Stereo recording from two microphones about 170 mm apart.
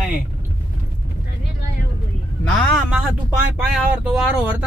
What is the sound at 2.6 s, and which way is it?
Speech, 5° left (ahead or behind).